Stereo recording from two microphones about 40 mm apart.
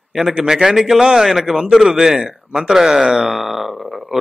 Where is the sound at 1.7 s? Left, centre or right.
Centre.